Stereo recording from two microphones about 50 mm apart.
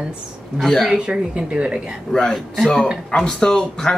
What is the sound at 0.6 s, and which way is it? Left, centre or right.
Speech, centre.